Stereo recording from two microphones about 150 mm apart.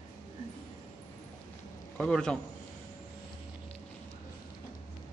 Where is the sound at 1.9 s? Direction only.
5° left (ahead or behind).